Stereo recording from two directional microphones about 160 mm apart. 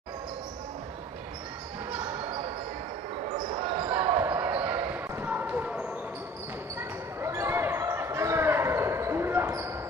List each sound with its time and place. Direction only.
2.0 s basketball bounce: 30° right (ahead or behind)
3.5 s basketball bounce: 35° right (ahead or behind)
4.2 s basketball bounce: 10° right (ahead or behind)